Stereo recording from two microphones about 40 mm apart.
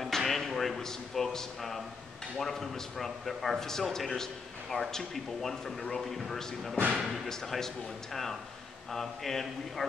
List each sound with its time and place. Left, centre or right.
0.0 s a man's voice: centre